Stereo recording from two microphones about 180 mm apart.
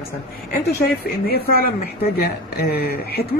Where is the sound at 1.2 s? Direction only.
55° left (ahead or behind).